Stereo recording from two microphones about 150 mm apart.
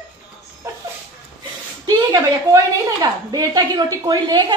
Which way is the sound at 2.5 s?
25° right (ahead or behind).